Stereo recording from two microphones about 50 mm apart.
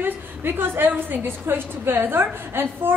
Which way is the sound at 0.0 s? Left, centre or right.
Right.